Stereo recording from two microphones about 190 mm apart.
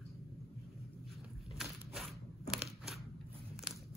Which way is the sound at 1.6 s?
Centre (ahead or behind).